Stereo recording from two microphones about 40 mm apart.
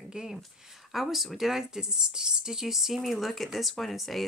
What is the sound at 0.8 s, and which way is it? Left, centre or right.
Speech, centre.